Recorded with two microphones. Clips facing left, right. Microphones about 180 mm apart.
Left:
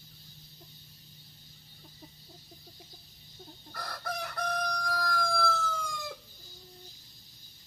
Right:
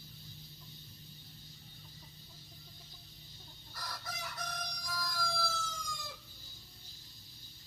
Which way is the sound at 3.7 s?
60° left (ahead or behind).